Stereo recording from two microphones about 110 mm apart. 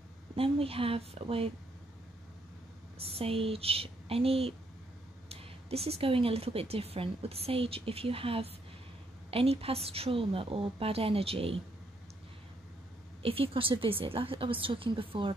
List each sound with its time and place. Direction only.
0.4 s speech: 60° right (ahead or behind)
3.1 s speech: 60° right (ahead or behind)
13.2 s a woman's voice: 60° right (ahead or behind)